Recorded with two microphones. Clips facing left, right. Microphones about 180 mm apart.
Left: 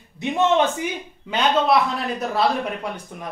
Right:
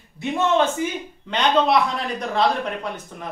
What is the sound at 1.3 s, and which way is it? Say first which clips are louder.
A man's voice: even; 5° left (ahead or behind).